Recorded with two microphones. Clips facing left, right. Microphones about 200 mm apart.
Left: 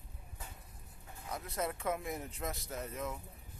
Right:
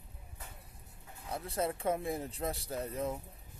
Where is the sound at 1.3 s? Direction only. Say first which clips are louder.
Right 3 dB; 30° right (ahead or behind).